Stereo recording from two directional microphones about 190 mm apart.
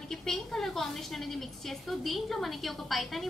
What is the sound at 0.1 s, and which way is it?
A woman's voice, centre (ahead or behind).